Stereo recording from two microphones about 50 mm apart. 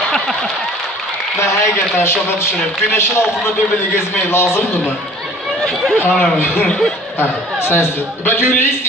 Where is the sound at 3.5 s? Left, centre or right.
Left.